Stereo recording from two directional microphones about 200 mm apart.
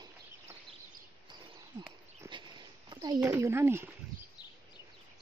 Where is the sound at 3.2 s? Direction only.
10° right (ahead or behind).